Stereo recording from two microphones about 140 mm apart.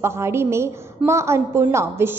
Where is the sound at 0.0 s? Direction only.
20° right (ahead or behind).